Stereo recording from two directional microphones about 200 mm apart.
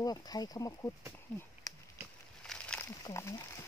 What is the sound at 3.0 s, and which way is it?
Speech, 15° left (ahead or behind).